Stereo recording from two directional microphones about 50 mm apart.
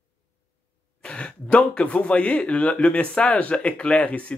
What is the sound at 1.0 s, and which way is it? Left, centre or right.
Speech, left.